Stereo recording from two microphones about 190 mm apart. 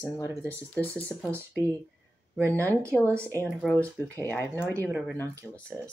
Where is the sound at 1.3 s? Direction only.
15° right (ahead or behind).